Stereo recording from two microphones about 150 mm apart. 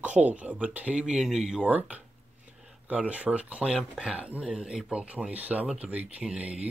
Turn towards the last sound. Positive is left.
turn(degrees=-5)  # may be behind; listen again after turning